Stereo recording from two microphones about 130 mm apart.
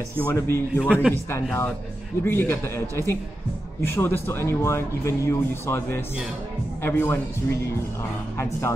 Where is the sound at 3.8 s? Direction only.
15° left (ahead or behind).